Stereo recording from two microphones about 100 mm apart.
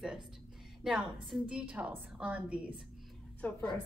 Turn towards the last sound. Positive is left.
turn(degrees=15)  # may be behind; listen again after turning